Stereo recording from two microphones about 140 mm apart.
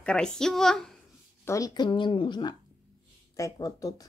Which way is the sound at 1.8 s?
35° left (ahead or behind).